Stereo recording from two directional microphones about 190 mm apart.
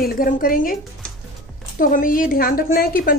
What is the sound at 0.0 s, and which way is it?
Speech, 50° left (ahead or behind).